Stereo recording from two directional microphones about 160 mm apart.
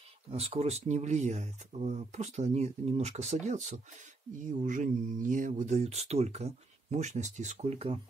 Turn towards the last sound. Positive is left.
turn(degrees=-40)  # may be behind; listen again after turning